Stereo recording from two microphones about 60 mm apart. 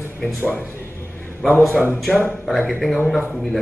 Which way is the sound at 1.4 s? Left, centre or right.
Centre.